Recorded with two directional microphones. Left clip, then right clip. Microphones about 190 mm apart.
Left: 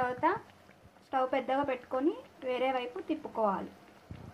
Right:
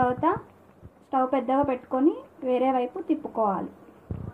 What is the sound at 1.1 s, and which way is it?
Speech, 45° right (ahead or behind).